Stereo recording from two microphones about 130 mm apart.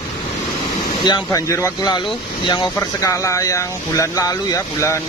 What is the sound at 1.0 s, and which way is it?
Speech, 30° left (ahead or behind).